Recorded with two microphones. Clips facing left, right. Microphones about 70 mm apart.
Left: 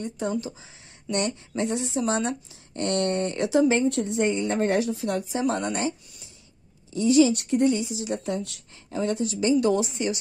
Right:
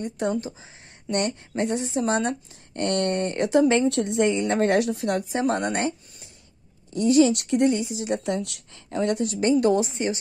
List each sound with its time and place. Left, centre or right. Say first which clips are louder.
0.0 s speech: right 2 dB; right
0.5 s speech: right 1 dB; right
3.6 s a woman's voice: right 2 dB; right
7.3 s a woman's voice: right 1 dB; right
8.2 s speech: right 2 dB; right